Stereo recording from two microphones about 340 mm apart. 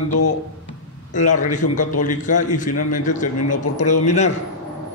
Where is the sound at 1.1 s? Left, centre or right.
Left.